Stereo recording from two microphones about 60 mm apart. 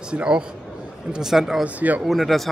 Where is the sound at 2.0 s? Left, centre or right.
Centre.